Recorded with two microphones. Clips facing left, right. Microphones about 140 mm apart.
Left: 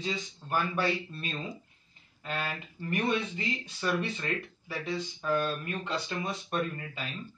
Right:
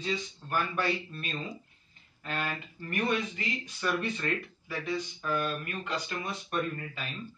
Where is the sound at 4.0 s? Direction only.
10° left (ahead or behind).